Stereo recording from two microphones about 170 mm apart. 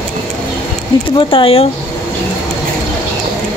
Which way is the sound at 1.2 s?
30° left (ahead or behind).